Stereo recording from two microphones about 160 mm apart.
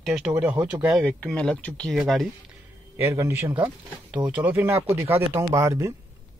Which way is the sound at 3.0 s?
15° right (ahead or behind).